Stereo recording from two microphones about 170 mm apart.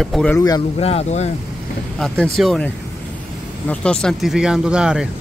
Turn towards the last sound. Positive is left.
turn(degrees=-5)  # may be behind; listen again after turning